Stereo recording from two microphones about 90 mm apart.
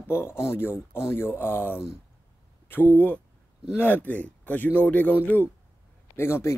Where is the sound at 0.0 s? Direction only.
25° left (ahead or behind).